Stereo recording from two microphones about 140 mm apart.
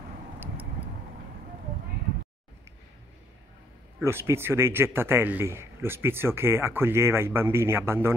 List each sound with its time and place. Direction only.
4.0 s a man's voice: 20° right (ahead or behind)